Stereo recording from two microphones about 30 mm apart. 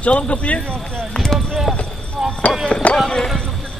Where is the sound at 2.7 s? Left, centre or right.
Left.